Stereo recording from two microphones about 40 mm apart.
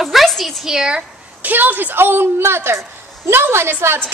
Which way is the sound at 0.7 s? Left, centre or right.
Centre.